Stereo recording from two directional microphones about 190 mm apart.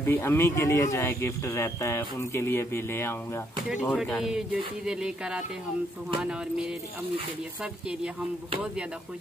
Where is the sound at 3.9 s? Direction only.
Centre (ahead or behind).